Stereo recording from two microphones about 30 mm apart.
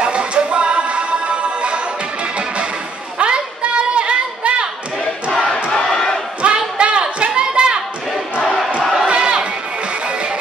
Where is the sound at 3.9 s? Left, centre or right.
Right.